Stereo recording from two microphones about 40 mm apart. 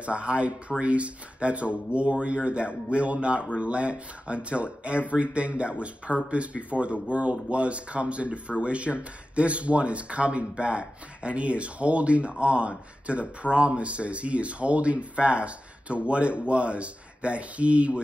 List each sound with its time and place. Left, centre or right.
0.0 s speech: right